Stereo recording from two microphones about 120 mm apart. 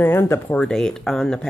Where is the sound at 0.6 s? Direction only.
5° left (ahead or behind).